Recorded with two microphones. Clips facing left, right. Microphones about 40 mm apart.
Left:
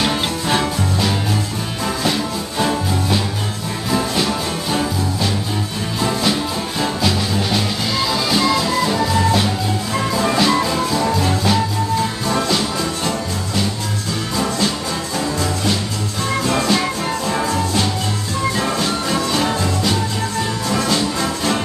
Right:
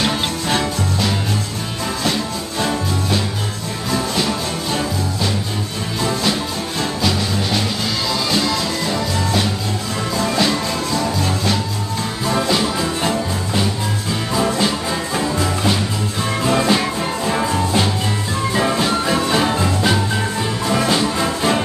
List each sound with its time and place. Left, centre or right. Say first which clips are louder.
0.0 s music: left 1 dB; centre
6.8 s music: left 1 dB; centre
12.3 s music: right 3 dB; centre
14.3 s music: right 2 dB; centre